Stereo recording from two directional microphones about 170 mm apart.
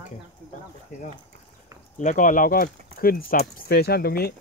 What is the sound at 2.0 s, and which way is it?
Speech, 50° left (ahead or behind).